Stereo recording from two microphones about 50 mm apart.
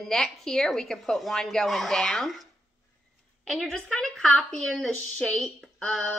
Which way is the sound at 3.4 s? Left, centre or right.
Centre.